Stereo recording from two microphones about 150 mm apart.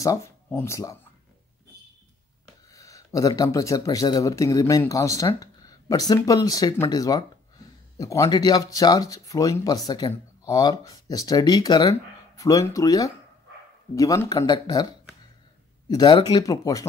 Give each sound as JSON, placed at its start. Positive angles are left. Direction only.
{"t": 0.0, "sound": "speech", "side_deg": 20}
{"t": 2.7, "sound": "speech", "side_deg": 20}